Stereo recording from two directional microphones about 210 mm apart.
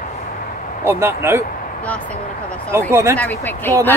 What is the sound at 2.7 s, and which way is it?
Speech, 10° right (ahead or behind).